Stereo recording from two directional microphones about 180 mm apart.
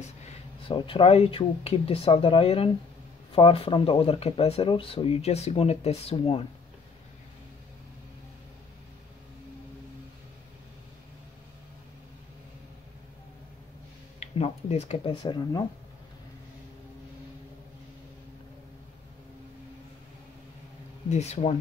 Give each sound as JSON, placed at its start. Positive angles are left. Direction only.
{"t": 0.7, "sound": "speech", "side_deg": 30}
{"t": 14.2, "sound": "speech", "side_deg": 35}
{"t": 21.1, "sound": "speech", "side_deg": 40}